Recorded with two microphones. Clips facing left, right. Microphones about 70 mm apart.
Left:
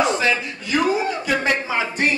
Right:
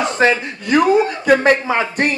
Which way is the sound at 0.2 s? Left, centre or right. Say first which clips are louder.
Right 6 dB; right.